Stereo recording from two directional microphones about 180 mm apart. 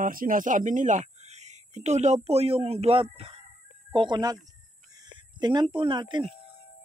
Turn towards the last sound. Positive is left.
turn(degrees=-25)  # may be behind; listen again after turning